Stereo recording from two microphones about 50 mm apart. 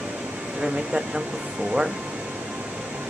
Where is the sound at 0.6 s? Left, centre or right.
Centre.